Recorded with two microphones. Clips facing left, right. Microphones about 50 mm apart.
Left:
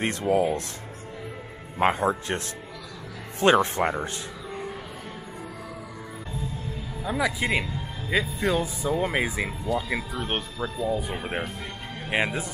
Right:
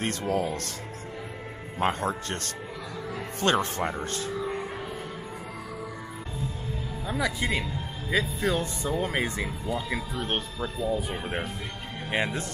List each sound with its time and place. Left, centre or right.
0.0 s speech: centre
1.8 s speech: centre
7.1 s speech: centre
9.7 s speech: right
10.1 s speech: centre
11.2 s speech: centre